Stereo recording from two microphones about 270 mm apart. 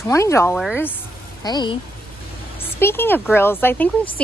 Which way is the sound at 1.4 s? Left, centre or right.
Centre.